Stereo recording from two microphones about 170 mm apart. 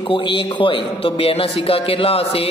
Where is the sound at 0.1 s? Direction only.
30° left (ahead or behind).